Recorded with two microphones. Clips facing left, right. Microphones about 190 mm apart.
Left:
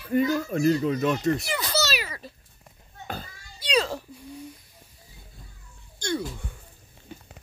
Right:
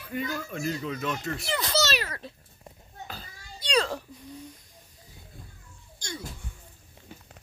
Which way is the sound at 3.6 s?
10° left (ahead or behind).